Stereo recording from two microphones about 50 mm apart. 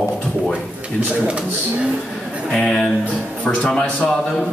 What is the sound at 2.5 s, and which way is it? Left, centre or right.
Speech, centre.